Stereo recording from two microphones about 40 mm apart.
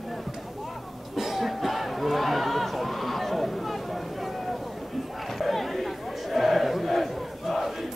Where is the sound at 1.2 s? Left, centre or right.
Centre.